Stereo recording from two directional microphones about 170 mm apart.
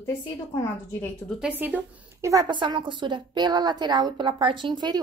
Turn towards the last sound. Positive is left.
turn(degrees=-25)  # may be behind; listen again after turning